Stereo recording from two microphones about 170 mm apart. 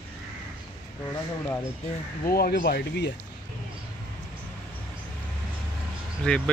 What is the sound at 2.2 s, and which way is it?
Speech, 65° left (ahead or behind).